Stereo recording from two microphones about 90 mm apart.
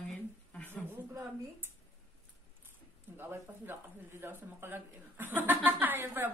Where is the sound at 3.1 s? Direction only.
25° right (ahead or behind).